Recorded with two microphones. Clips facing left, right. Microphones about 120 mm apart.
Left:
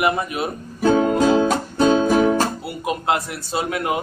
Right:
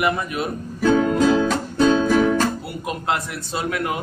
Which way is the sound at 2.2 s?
30° left (ahead or behind).